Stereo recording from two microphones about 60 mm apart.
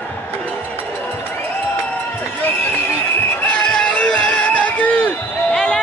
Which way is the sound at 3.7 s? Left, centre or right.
Centre.